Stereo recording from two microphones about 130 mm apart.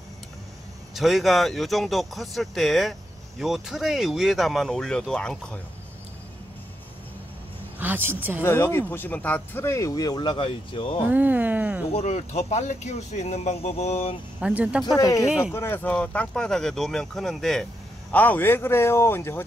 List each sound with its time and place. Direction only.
0.9 s speech: centre (ahead or behind)
7.8 s speech: 15° right (ahead or behind)
8.4 s speech: 20° left (ahead or behind); by 11.0 s 40° left (ahead or behind)
11.1 s speech: 15° right (ahead or behind)
11.9 s speech: 55° left (ahead or behind)
14.4 s speech: 10° right (ahead or behind)
15.0 s speech: 25° left (ahead or behind)
15.2 s speech: 5° right (ahead or behind)
15.5 s speech: 15° left (ahead or behind)